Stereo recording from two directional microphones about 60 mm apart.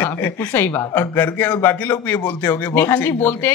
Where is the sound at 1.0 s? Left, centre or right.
Left.